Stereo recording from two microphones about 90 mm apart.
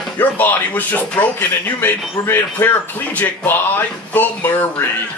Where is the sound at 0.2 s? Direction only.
20° left (ahead or behind).